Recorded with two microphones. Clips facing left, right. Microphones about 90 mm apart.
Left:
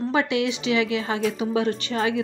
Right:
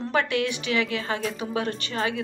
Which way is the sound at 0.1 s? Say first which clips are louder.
Even; 20° left (ahead or behind).